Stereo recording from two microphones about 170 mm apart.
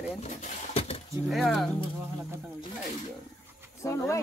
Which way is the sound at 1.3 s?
Centre (ahead or behind).